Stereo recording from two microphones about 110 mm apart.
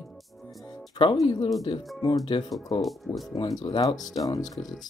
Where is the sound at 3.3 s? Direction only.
35° left (ahead or behind).